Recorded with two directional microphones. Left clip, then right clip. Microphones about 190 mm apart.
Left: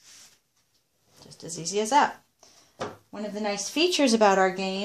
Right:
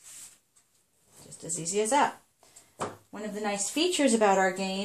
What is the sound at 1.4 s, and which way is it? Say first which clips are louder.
Speech: left 1 dB; 25° left (ahead or behind).